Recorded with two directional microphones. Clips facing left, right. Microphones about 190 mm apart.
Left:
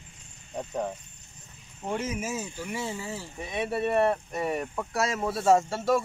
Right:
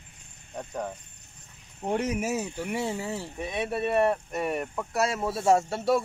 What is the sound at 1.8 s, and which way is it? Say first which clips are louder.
Speech: right 4 dB; 60° right (ahead or behind).